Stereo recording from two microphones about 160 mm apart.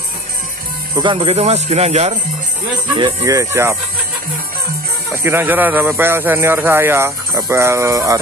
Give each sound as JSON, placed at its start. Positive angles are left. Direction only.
{"t": 0.9, "sound": "speech", "side_deg": -30}
{"t": 3.0, "sound": "speech", "side_deg": -20}
{"t": 5.1, "sound": "speech", "side_deg": -15}